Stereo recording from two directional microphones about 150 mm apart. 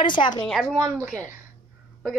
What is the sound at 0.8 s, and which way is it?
Speech, 20° right (ahead or behind).